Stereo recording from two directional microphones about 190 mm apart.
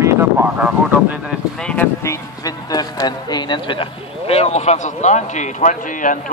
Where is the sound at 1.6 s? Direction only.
5° left (ahead or behind).